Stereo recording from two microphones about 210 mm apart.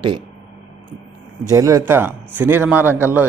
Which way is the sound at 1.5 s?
15° right (ahead or behind).